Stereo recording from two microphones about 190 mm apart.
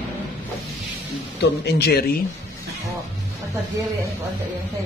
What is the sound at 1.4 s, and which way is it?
Speech, 60° left (ahead or behind).